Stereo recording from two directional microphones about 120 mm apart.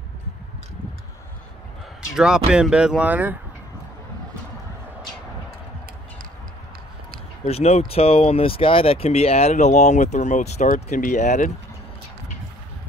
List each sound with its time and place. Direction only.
2.0 s speech: 5° right (ahead or behind)
7.4 s speech: 60° left (ahead or behind); by 11.5 s 90° left